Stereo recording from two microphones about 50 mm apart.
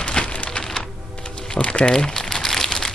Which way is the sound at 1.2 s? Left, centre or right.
Centre.